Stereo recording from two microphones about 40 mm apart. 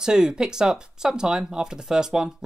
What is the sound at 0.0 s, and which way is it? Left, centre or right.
Speech, centre.